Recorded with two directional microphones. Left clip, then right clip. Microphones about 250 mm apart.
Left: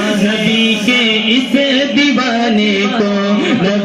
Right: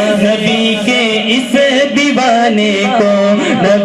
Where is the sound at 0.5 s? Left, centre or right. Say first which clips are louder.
Right 1 dB; right.